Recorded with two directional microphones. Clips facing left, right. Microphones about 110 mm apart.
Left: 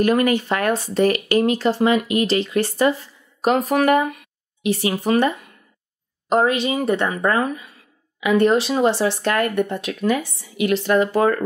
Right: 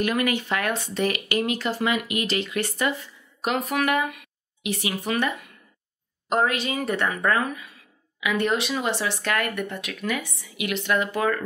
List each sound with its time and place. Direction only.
0.0 s speech: 40° left (ahead or behind)